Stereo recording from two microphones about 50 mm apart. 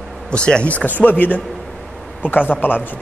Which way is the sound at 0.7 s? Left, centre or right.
Left.